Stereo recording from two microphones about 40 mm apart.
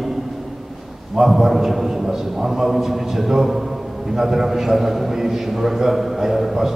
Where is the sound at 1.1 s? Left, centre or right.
Centre.